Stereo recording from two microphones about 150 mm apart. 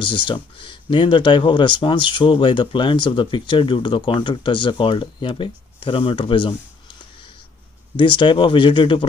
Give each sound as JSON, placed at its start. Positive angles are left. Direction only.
{"t": 0.0, "sound": "speech", "side_deg": 35}
{"t": 7.9, "sound": "speech", "side_deg": 30}